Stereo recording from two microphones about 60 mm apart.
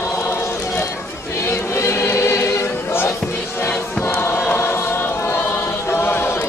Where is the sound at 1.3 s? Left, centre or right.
Left.